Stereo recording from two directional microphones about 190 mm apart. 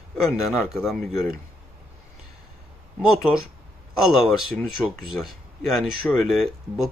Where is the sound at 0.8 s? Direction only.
Centre (ahead or behind).